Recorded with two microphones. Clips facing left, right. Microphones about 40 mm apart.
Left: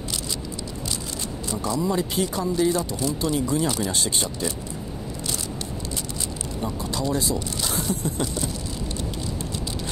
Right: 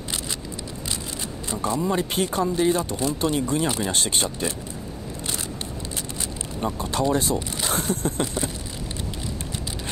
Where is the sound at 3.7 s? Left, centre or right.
Right.